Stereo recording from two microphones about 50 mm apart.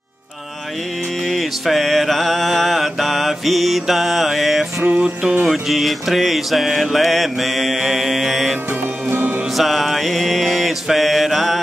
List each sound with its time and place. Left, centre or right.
1.2 s mantra: centre
9.1 s music: right
9.5 s mantra: centre